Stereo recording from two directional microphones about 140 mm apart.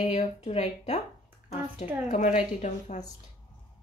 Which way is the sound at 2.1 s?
55° left (ahead or behind).